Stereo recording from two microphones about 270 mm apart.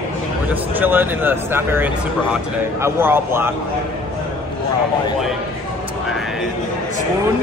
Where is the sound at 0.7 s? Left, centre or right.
Centre.